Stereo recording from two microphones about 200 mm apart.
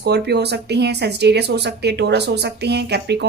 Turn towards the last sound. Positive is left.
turn(degrees=-55)  # may be behind; listen again after turning